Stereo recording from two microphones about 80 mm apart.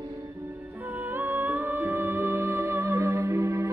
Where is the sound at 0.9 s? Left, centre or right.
Right.